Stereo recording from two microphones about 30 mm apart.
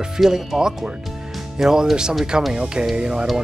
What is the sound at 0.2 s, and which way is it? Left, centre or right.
Speech, centre.